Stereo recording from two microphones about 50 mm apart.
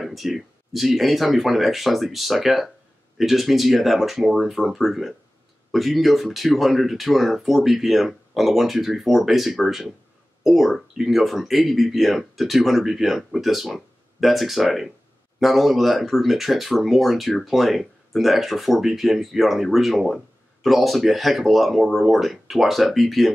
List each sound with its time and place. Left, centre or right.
0.0 s speech: centre